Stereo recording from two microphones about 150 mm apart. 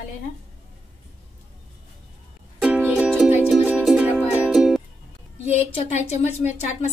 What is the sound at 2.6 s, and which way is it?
Music, 10° right (ahead or behind).